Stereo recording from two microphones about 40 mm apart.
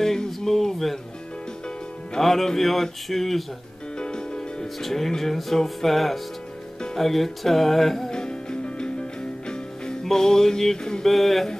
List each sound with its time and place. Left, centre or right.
0.0 s a sound: centre
2.1 s speech: centre
4.0 s music: left
4.7 s music: centre
7.0 s speech: centre
8.1 s music: centre
11.1 s speech: centre